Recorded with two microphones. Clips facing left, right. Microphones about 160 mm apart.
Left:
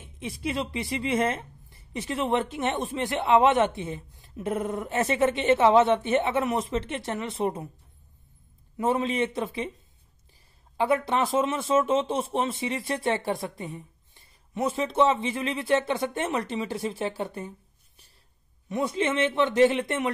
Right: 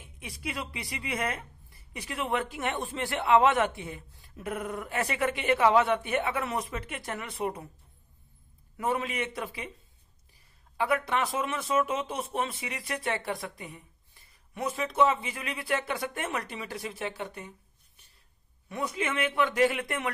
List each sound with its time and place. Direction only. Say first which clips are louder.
0.0 s speech: left 7 dB; 25° left (ahead or behind)
8.7 s speech: left 5 dB; 25° left (ahead or behind)
10.8 s speech: left 4 dB; 30° left (ahead or behind)
18.7 s speech: left 6 dB; 25° left (ahead or behind)